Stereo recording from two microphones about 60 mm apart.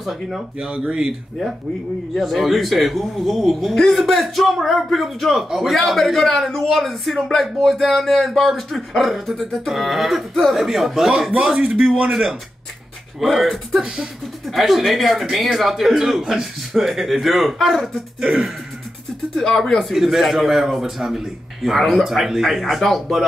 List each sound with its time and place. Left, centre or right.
0.0 s speech: centre
0.6 s speech: centre
2.1 s a man's voice: centre
13.2 s speech: centre
19.3 s speech: centre